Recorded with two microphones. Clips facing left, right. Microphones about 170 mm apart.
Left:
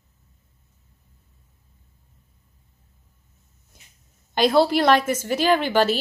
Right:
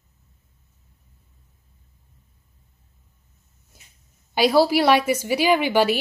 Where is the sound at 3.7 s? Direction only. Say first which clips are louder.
Even; 5° right (ahead or behind).